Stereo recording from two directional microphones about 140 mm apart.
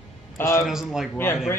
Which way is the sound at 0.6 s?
Centre (ahead or behind).